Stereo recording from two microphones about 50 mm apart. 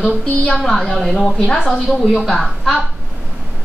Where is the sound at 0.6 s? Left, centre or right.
Centre.